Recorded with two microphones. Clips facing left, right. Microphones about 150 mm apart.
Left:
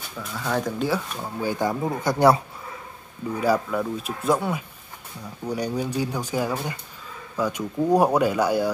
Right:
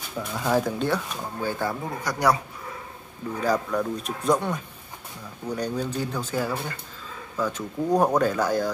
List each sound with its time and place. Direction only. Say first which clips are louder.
0.2 s speech: right 2 dB; 10° right (ahead or behind); by 2.4 s 25° left (ahead or behind)
3.3 s speech: left 2 dB; 10° left (ahead or behind)